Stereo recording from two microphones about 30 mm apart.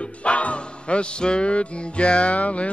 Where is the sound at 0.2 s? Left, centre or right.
Left.